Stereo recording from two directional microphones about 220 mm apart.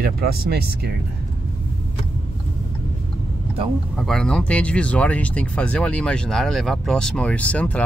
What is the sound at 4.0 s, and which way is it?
Speech, centre (ahead or behind).